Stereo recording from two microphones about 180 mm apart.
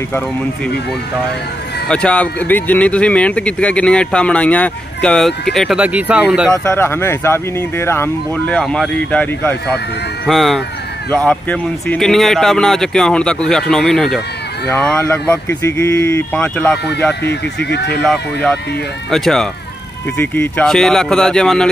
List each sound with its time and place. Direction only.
1.9 s speech: 5° left (ahead or behind)
6.5 s a man's voice: 15° left (ahead or behind)
17.2 s speech: 65° left (ahead or behind)
18.0 s a man's voice: centre (ahead or behind)